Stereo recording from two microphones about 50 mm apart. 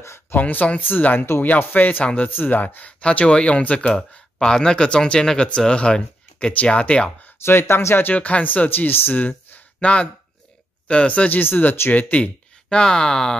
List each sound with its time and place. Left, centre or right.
0.4 s speech: left
4.4 s speech: centre
7.4 s speech: left
8.1 s speech: left
9.2 s a sound: left
10.9 s speech: left
11.3 s speech: left
12.6 s speech: centre